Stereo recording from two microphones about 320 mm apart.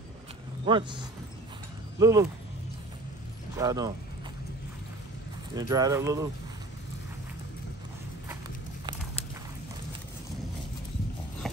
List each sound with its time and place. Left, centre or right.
0.7 s speech: centre
3.5 s speech: centre
5.5 s speech: centre
11.4 s clip-clop: centre